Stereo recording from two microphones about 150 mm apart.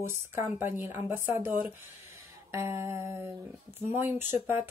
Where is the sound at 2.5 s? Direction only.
20° right (ahead or behind).